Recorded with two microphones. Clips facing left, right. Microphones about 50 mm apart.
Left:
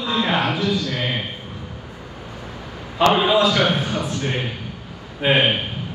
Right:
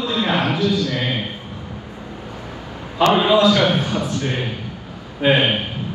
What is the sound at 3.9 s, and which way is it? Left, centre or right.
Speech, left.